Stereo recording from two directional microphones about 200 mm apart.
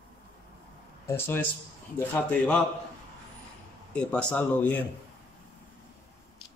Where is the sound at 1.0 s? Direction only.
10° left (ahead or behind).